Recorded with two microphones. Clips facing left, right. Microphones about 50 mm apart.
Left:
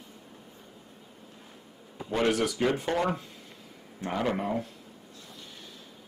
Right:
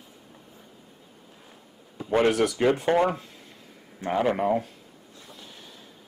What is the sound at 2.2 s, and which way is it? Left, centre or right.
Speech, centre.